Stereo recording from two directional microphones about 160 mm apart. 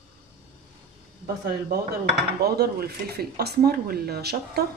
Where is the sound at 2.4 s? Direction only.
80° right.